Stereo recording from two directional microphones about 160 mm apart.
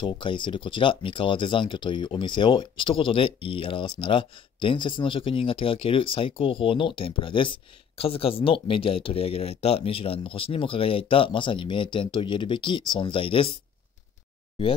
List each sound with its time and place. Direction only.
0.0 s speech: 30° left (ahead or behind)